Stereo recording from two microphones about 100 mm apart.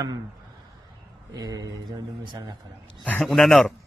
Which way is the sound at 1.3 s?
40° right (ahead or behind).